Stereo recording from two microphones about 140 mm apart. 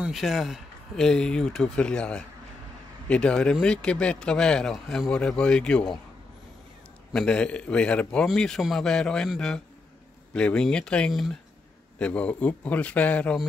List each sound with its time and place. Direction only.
0.0 s a man's voice: centre (ahead or behind)
7.1 s a man's voice: 5° left (ahead or behind)